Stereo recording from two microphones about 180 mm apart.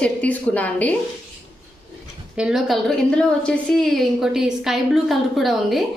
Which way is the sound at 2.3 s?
5° right (ahead or behind).